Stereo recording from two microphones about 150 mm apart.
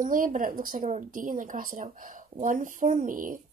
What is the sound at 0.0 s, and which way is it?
Speech, 65° right (ahead or behind).